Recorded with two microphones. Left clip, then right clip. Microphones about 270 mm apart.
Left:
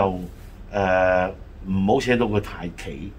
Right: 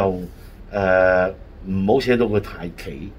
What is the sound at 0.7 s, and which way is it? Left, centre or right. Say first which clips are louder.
Speech: right 3 dB; centre.